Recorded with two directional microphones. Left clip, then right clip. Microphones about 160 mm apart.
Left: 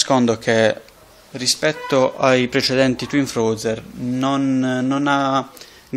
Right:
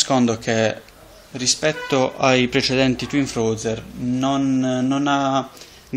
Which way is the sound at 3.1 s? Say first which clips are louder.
Left 2 dB; 40° left (ahead or behind).